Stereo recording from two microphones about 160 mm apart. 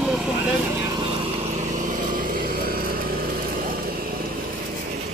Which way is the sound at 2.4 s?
65° right (ahead or behind).